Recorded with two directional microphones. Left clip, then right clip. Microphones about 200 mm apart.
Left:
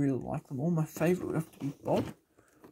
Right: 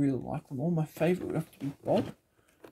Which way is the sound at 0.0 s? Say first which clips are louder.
Right 1 dB; 5° left (ahead or behind).